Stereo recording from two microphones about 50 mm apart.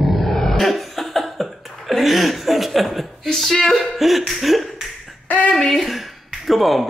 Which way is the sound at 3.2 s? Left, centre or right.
Centre.